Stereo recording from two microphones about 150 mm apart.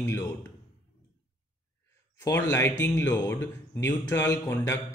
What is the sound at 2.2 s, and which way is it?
Speech, 20° left (ahead or behind).